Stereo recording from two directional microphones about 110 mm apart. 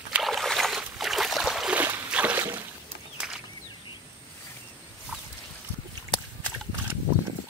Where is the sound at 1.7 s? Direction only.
15° right (ahead or behind).